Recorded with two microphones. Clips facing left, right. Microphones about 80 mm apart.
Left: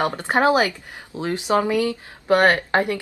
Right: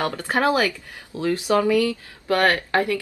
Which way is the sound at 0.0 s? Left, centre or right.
Left.